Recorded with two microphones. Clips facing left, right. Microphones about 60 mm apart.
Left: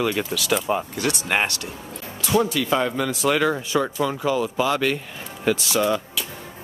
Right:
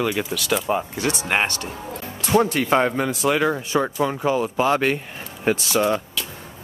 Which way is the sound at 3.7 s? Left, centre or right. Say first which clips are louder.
Right 1 dB; right.